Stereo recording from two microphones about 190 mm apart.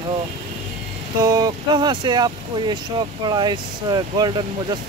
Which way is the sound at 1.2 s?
20° right (ahead or behind).